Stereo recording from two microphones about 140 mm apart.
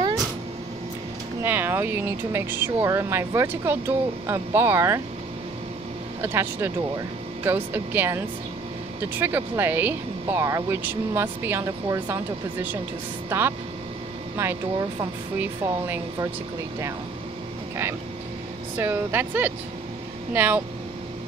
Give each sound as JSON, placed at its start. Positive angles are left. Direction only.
{"t": 1.4, "sound": "speech", "side_deg": -15}
{"t": 6.2, "sound": "speech", "side_deg": -15}
{"t": 13.3, "sound": "speech", "side_deg": -15}
{"t": 18.8, "sound": "speech", "side_deg": -15}